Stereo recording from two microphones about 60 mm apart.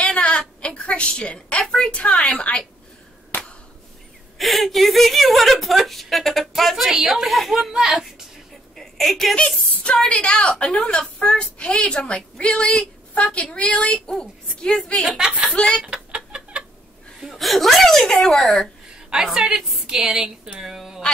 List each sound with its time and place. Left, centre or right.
0.0 s a sound: centre
2.0 s a woman's voice: centre
4.4 s a woman's voice: centre
8.7 s a sound: centre
10.0 s a woman's voice: centre
15.1 s a woman's voice: centre
15.5 s a woman's voice: centre
15.8 s chicken: centre
17.2 s a woman's voice: centre
19.0 s a woman's voice: centre
20.5 s a sound: centre